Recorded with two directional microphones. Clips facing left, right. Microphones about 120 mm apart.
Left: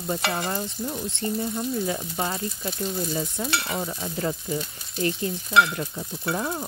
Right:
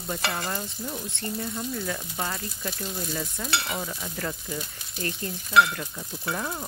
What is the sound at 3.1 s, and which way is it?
Frying, 15° left (ahead or behind).